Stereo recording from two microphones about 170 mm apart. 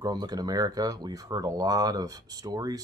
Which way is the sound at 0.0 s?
25° right (ahead or behind).